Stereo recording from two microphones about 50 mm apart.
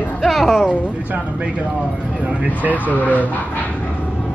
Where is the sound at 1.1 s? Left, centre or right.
Right.